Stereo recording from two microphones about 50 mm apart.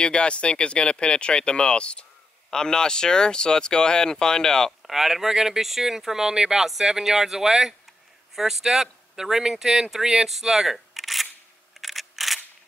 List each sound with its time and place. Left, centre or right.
0.0 s speech: centre
4.8 s speech: centre
11.8 s a sound: centre